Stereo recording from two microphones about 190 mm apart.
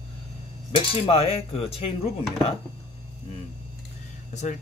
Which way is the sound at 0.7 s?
30° left (ahead or behind).